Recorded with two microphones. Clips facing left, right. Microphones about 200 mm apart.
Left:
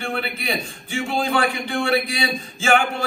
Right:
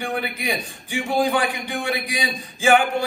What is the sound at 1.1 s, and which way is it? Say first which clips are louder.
A man's voice: right 1 dB; 15° right (ahead or behind).